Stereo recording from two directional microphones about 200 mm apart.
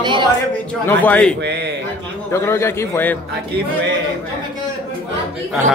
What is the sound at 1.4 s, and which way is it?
Speech, 55° right (ahead or behind).